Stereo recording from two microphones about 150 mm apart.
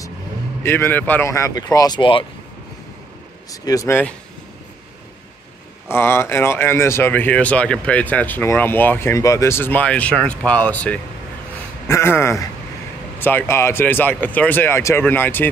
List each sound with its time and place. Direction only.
0.7 s speech: 15° left (ahead or behind); by 2.2 s 35° left (ahead or behind)
3.6 s speech: 20° left (ahead or behind)
5.9 s speech: 15° left (ahead or behind)